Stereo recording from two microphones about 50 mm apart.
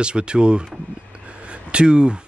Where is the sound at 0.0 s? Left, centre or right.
Centre.